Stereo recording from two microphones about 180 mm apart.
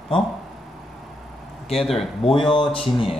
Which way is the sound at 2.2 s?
30° left (ahead or behind).